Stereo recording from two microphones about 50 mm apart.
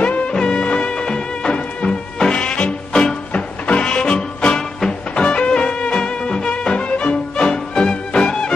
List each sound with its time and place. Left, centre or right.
0.0 s music: left